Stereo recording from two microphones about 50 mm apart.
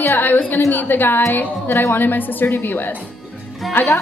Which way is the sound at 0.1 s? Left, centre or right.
Left.